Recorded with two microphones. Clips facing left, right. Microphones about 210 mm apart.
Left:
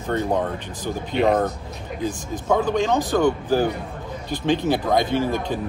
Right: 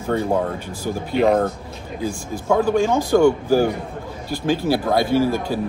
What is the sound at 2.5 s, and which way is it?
A man's voice, 10° right (ahead or behind).